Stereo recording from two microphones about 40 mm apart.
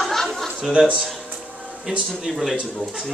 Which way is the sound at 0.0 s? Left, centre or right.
Centre.